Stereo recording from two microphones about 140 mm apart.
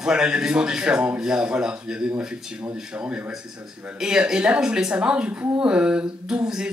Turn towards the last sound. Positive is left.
turn(degrees=-5)  # may be behind; listen again after turning